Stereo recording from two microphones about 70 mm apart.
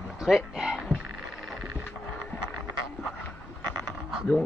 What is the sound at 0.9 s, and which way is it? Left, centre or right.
Music, centre.